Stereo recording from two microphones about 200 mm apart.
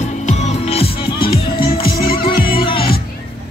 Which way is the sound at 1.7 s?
50° left (ahead or behind).